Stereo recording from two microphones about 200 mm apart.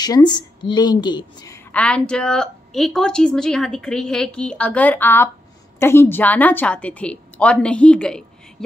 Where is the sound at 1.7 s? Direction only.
5° left (ahead or behind).